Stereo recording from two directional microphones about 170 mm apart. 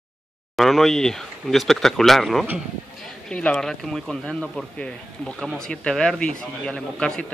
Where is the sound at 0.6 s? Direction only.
Centre (ahead or behind).